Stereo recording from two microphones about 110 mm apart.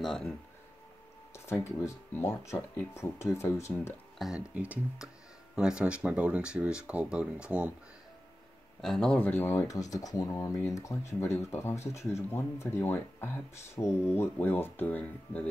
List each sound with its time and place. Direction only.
0.0 s speech: 5° left (ahead or behind)
1.3 s speech: 25° left (ahead or behind)
4.2 s speech: 5° right (ahead or behind)
8.8 s speech: 5° left (ahead or behind)